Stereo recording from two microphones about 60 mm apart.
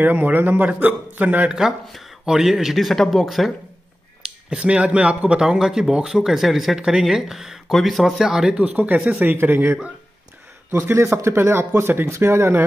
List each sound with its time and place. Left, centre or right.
0.0 s a man's voice: right
2.2 s speech: centre
4.5 s speech: centre
8.5 s a man's voice: right
11.3 s speech: right